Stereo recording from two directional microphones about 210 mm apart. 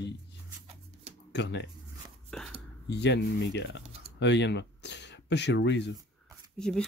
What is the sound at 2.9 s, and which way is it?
Speech, 55° left (ahead or behind).